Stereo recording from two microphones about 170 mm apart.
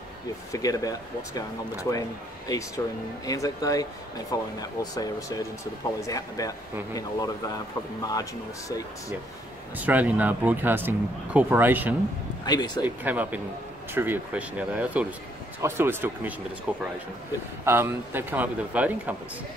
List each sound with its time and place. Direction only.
0.5 s a man's voice: 20° left (ahead or behind)
9.8 s speech: 10° right (ahead or behind)
12.4 s a man's voice: 25° left (ahead or behind)
12.8 s speech: 10° right (ahead or behind)